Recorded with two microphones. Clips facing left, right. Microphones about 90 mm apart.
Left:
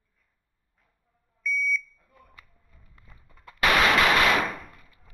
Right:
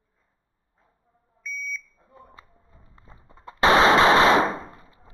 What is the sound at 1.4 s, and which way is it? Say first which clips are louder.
Smoke detector: left 7 dB; 25° right (ahead or behind).